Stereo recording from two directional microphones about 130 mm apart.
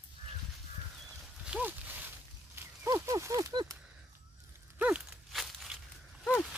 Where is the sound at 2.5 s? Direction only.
20° right (ahead or behind).